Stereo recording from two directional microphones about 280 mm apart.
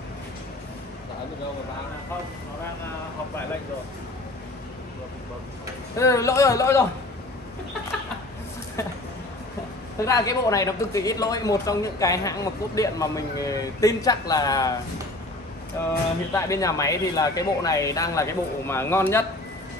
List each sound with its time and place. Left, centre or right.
5.9 s a woman's voice: centre
8.8 s a sound: centre
10.0 s a woman's voice: centre
15.8 s a woman's voice: centre